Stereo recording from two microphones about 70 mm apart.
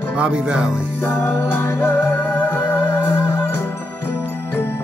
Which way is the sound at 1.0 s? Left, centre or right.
Left.